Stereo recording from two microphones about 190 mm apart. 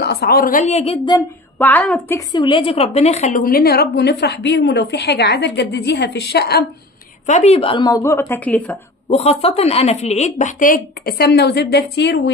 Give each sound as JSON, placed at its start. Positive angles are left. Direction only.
{"t": 0.0, "sound": "a woman's voice", "side_deg": 55}
{"t": 1.6, "sound": "a woman's voice", "side_deg": 10}
{"t": 3.4, "sound": "a woman's voice", "side_deg": 55}
{"t": 7.2, "sound": "a woman's voice", "side_deg": 35}
{"t": 9.1, "sound": "a woman's voice", "side_deg": 35}